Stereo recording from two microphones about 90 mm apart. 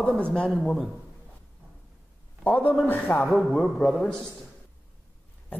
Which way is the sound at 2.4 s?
20° left (ahead or behind).